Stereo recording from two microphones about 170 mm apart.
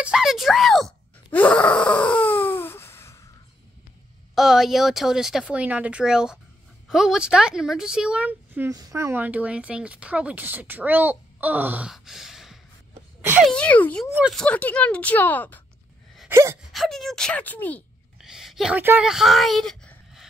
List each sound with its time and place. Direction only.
0.0 s groan: 5° right (ahead or behind); by 3.2 s 15° left (ahead or behind)
4.4 s speech: centre (ahead or behind)
16.3 s gasp: 15° right (ahead or behind)
16.7 s speech: centre (ahead or behind)
18.2 s a sound: 5° right (ahead or behind)